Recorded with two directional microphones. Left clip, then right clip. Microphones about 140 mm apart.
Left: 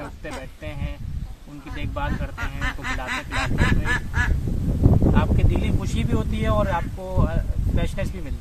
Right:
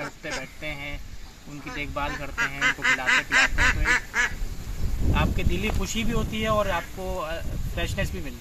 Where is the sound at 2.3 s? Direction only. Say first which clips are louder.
Right 6 dB; 60° left (ahead or behind).